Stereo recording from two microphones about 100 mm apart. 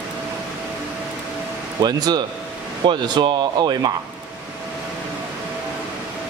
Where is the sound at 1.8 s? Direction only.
40° right (ahead or behind).